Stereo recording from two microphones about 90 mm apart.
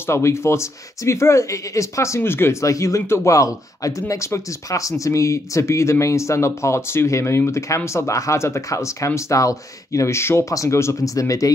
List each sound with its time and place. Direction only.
0.0 s speech: 30° left (ahead or behind)